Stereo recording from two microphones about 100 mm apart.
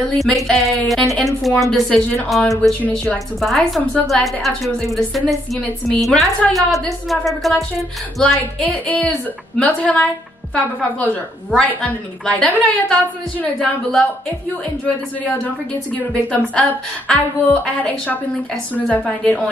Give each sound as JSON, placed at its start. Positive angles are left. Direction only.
{"t": 0.5, "sound": "a woman's voice", "side_deg": 0}
{"t": 8.4, "sound": "a woman's voice", "side_deg": 15}
{"t": 15.2, "sound": "a woman's voice", "side_deg": 10}